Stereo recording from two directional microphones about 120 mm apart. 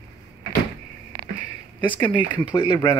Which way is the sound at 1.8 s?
40° left (ahead or behind).